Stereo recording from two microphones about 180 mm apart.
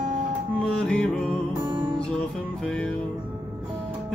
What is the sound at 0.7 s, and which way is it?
Music, 5° left (ahead or behind).